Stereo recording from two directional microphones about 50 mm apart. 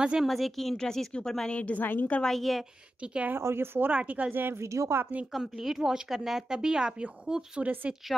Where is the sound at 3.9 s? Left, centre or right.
Right.